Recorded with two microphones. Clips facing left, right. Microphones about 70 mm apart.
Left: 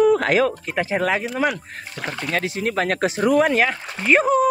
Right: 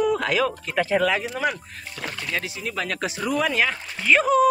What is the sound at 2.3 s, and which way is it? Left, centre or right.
Speech, left.